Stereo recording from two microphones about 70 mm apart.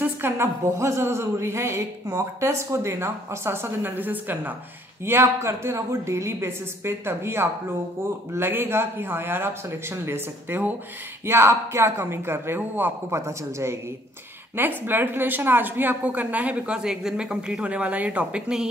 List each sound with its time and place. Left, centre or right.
0.0 s a sound: right
0.7 s a woman's voice: right
5.0 s a woman's voice: right
11.2 s a woman's voice: right
13.1 s speech: right
14.5 s speech: right